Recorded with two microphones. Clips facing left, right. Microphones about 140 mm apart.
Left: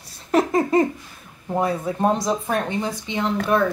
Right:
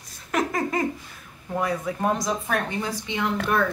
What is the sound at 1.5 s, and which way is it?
Speech, 30° left (ahead or behind).